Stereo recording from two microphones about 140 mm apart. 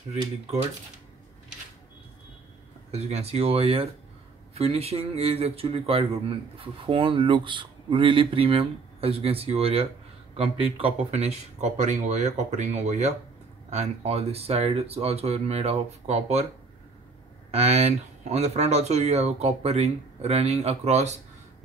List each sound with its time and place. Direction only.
2.9 s speech: 50° right (ahead or behind)
17.5 s speech: 50° right (ahead or behind)